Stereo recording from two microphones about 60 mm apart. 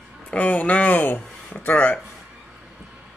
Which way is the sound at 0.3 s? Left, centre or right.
Left.